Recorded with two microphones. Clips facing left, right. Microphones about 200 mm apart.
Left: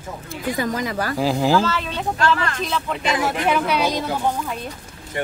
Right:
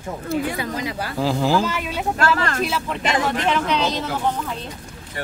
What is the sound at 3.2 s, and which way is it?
Speech, 10° left (ahead or behind).